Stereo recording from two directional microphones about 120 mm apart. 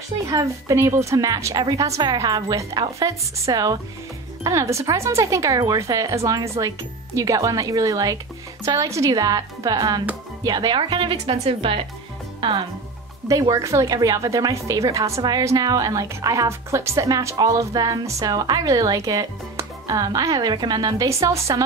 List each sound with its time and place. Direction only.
0.3 s speech: 30° right (ahead or behind)
11.3 s speech: 55° right (ahead or behind)
12.4 s speech: 45° right (ahead or behind)
13.3 s speech: 30° right (ahead or behind)
21.1 s speech: 25° right (ahead or behind)